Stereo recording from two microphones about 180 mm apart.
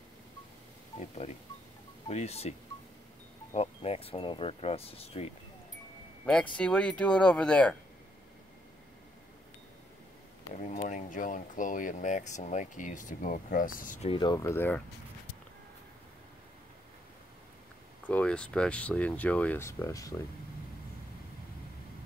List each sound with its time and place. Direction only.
0.9 s speech: 35° left (ahead or behind)
3.5 s speech: 35° left (ahead or behind)
6.5 s speech: 5° left (ahead or behind)
10.7 s speech: 45° left (ahead or behind)
14.0 s speech: 25° left (ahead or behind)
18.0 s speech: 5° left (ahead or behind)